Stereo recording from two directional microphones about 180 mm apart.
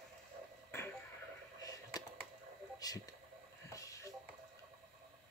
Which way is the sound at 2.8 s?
20° left (ahead or behind).